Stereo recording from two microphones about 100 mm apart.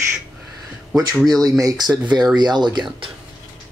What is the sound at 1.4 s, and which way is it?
Speech, 35° right (ahead or behind).